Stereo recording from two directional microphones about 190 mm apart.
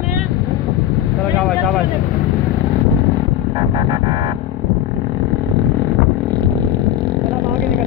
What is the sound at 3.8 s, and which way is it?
Music, 30° right (ahead or behind).